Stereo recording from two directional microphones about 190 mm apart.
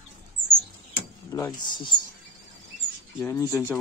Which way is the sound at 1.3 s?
20° left (ahead or behind).